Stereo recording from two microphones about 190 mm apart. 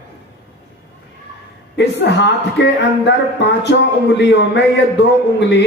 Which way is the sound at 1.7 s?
65° left (ahead or behind).